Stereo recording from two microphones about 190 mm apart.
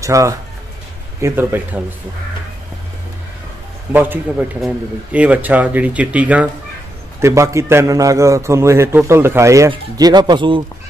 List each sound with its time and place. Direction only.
0.0 s a man's voice: 15° right (ahead or behind)
3.9 s a man's voice: 10° right (ahead or behind)